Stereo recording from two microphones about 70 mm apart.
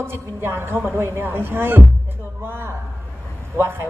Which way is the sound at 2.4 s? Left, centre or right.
Right.